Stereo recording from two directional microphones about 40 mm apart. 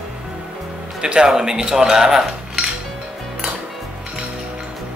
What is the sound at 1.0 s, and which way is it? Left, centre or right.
Speech, right.